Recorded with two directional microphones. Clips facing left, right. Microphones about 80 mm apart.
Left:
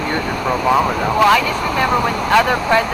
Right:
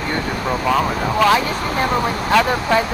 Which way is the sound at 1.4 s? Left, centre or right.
Left.